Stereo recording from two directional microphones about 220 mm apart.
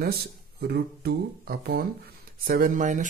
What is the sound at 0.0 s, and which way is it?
Speech, 45° right (ahead or behind).